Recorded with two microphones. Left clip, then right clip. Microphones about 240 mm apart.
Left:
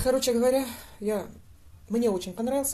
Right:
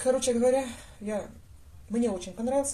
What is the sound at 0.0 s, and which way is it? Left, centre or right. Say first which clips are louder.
Speech: left 1 dB; left.